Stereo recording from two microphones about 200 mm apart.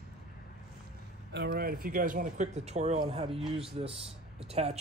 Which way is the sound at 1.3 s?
55° right (ahead or behind).